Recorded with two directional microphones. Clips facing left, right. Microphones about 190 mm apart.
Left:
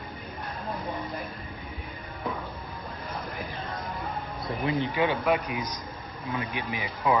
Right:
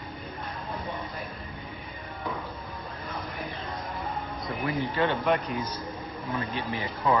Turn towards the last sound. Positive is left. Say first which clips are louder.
# even
turn(degrees=15)  # may be behind; listen again after turning